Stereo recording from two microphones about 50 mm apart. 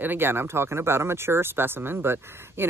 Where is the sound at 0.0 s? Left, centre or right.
Right.